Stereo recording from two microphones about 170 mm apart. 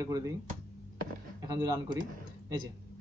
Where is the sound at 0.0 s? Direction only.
20° right (ahead or behind).